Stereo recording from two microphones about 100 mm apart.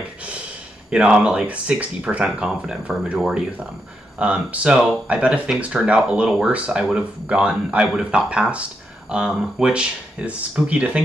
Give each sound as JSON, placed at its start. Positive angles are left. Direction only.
{"t": 0.8, "sound": "speech", "side_deg": -10}